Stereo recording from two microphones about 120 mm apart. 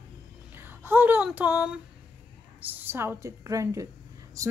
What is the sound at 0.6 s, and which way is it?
Speech, 20° right (ahead or behind).